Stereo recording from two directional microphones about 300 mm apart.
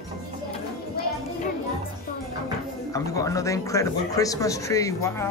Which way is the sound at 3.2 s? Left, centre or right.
Centre.